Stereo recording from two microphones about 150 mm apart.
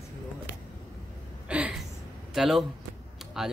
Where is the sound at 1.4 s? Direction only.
10° right (ahead or behind).